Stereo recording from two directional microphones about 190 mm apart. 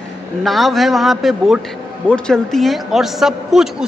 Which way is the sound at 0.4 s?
Centre (ahead or behind).